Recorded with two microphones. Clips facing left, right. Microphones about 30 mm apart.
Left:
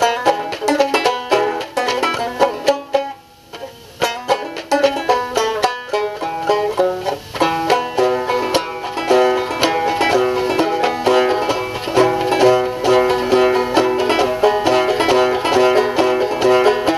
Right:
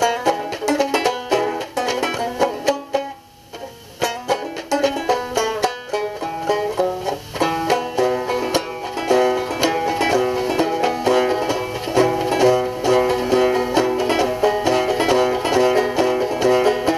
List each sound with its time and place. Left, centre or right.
0.0 s music: left